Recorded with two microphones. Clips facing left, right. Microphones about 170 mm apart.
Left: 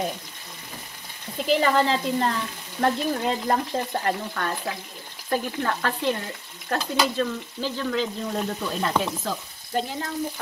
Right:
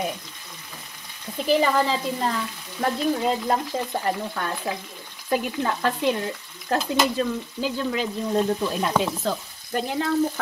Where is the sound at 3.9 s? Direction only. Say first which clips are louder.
Right 1 dB; 15° right (ahead or behind).